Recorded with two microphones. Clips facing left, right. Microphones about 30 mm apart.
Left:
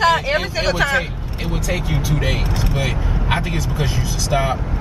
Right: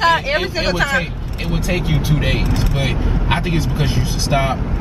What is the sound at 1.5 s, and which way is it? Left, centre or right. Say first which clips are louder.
Speech: right 3 dB; centre.